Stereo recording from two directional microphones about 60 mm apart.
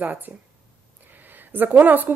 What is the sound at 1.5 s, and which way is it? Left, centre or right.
Speech, right.